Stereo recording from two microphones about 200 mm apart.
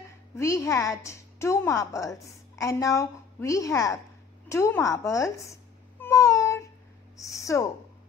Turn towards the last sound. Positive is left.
turn(degrees=15)  # may be behind; listen again after turning